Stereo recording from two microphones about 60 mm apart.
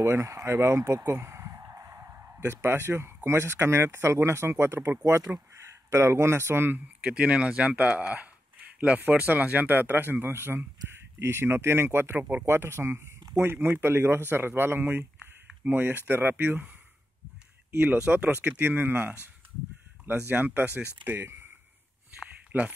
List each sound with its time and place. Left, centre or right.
0.0 s speech: right
1.0 s a sound: right
2.5 s speech: right
7.1 s speech: centre; by 12.2 s right
12.2 s speech: right
12.4 s speech: right
17.7 s speech: centre
18.1 s speech: right
21.3 s a sound: right
22.5 s speech: right